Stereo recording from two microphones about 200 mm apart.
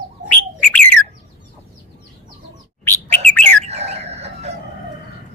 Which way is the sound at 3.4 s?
30° right (ahead or behind).